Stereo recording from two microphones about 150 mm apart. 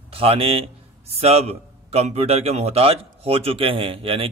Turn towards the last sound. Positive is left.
turn(degrees=-35)  # may be behind; listen again after turning